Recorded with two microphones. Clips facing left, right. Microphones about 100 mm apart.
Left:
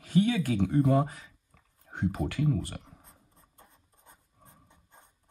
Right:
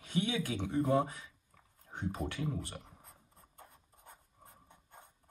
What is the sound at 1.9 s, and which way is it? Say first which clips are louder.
Speech: left 7 dB; 65° left (ahead or behind).